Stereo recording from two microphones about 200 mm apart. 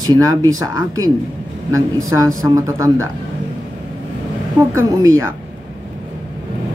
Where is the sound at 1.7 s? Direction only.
15° right (ahead or behind).